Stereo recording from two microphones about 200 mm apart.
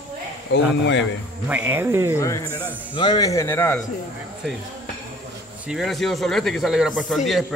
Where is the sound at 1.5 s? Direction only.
10° right (ahead or behind).